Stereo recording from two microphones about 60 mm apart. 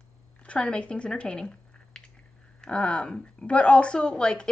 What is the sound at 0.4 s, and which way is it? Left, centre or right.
A woman's voice, centre.